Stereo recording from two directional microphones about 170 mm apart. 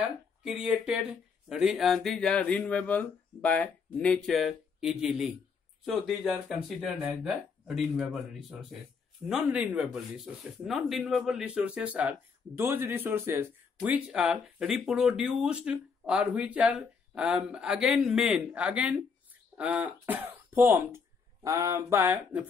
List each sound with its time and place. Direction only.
0.4 s speech: 5° right (ahead or behind)